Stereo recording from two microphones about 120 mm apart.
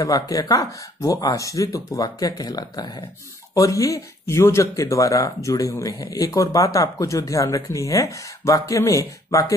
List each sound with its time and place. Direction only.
0.0 s speech: 30° left (ahead or behind)